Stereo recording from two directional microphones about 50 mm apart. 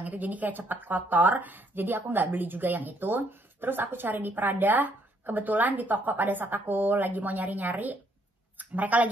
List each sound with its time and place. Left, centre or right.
0.0 s speech: right